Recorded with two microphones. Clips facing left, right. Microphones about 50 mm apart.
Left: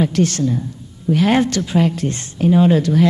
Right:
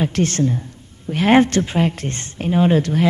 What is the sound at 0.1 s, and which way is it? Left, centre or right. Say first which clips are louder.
A woman's voice: left 2 dB; right.